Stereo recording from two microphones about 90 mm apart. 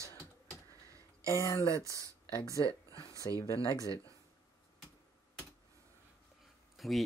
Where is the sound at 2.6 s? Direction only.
40° right (ahead or behind).